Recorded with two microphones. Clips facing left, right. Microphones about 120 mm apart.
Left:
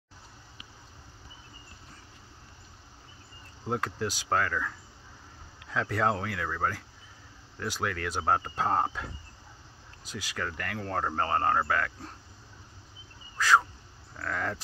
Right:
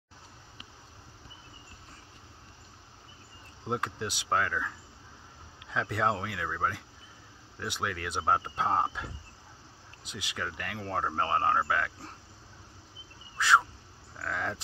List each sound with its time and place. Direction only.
3.6 s speech: 15° right (ahead or behind)
10.1 s speech: 15° right (ahead or behind)
14.2 s speech: 15° right (ahead or behind)